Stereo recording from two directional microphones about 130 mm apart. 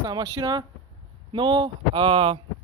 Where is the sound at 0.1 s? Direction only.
30° right (ahead or behind).